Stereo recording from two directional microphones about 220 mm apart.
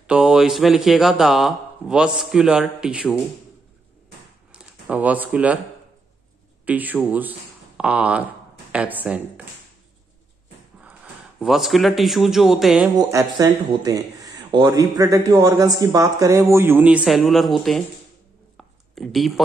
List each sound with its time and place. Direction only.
0.0 s speech: 5° right (ahead or behind)
4.5 s speech: 5° right (ahead or behind)
6.6 s speech: 5° right (ahead or behind)
10.8 s a man's voice: 5° right (ahead or behind)
12.9 s speech: 15° right (ahead or behind); by 17.8 s centre (ahead or behind)
18.6 s a sound: centre (ahead or behind)